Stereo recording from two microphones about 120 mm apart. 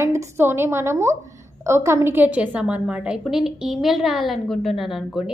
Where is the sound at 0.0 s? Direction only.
25° right (ahead or behind).